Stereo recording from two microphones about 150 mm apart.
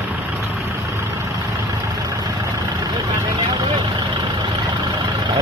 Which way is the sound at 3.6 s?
30° right (ahead or behind).